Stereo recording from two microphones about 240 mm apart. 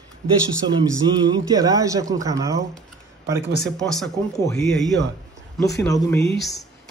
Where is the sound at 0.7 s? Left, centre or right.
Centre.